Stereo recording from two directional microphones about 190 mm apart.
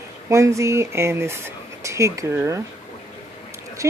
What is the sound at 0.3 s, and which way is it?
Speech, 15° right (ahead or behind).